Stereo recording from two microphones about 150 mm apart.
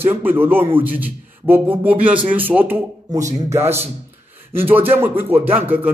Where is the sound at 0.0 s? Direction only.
15° right (ahead or behind).